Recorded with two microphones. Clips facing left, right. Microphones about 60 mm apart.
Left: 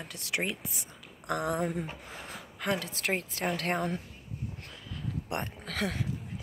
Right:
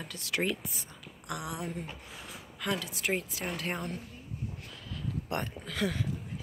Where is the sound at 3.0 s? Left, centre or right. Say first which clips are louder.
Left 1 dB; left.